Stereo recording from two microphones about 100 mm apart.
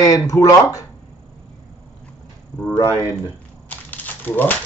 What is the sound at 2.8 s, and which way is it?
Speech, 35° left (ahead or behind).